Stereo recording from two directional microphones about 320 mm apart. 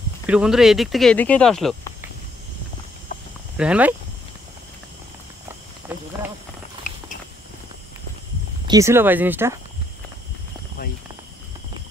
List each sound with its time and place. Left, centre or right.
0.3 s speech: centre
3.5 s speech: centre
8.6 s speech: centre
10.8 s speech: left